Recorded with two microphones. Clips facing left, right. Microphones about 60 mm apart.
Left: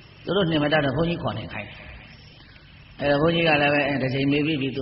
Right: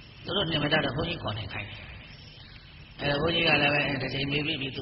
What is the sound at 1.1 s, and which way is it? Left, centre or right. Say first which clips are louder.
Speech: left 7 dB; left.